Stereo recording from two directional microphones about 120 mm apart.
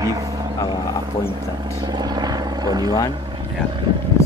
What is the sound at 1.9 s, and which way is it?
Speech, 35° right (ahead or behind).